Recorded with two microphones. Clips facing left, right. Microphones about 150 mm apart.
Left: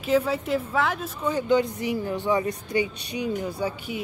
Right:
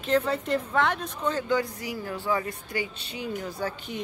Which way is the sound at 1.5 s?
20° left (ahead or behind).